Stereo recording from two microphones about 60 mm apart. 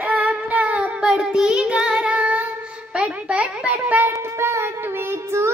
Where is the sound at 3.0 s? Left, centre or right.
Right.